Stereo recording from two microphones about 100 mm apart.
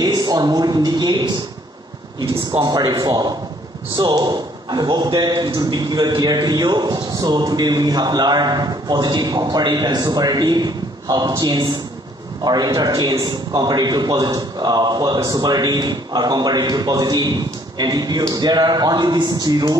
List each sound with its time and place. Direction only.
0.0 s a man's voice: 40° right (ahead or behind)
2.6 s a man's voice: 40° right (ahead or behind)